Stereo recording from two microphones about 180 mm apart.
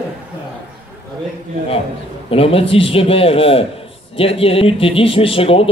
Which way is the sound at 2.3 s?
30° left (ahead or behind).